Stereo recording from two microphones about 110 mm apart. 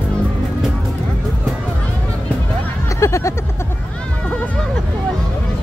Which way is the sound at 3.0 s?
25° left (ahead or behind).